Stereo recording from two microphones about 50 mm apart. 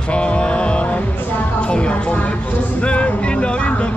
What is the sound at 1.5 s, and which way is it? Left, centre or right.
Speech, left.